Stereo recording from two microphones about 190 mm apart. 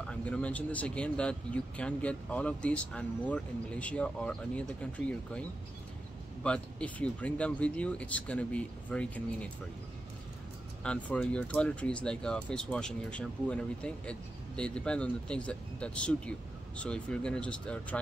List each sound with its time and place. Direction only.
0.1 s speech: 5° left (ahead or behind)
10.8 s speech: 5° left (ahead or behind)